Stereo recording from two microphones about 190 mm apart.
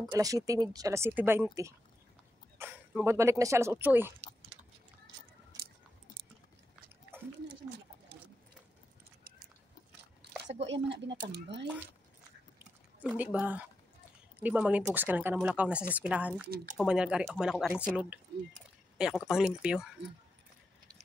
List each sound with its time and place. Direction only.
0.0 s speech: 20° right (ahead or behind)
10.4 s speech: 70° right (ahead or behind)
13.0 s speech: 10° right (ahead or behind)
16.4 s speech: 50° right (ahead or behind)
16.7 s speech: 5° right (ahead or behind)